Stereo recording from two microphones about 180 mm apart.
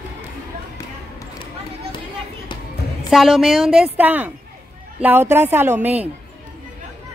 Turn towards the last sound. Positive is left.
turn(degrees=-10)  # may be behind; listen again after turning